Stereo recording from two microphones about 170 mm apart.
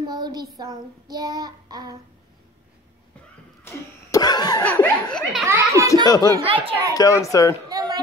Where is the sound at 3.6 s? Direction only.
20° left (ahead or behind).